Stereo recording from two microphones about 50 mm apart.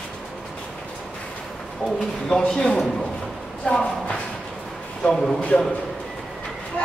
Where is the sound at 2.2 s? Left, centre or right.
Centre.